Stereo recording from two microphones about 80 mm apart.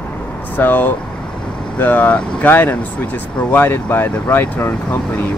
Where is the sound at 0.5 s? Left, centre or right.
Left.